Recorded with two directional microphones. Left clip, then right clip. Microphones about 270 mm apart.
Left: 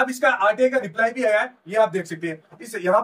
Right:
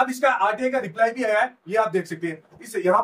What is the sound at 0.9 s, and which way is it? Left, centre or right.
Speech, centre.